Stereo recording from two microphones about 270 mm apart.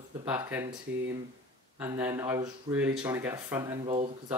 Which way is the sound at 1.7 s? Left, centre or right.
Centre.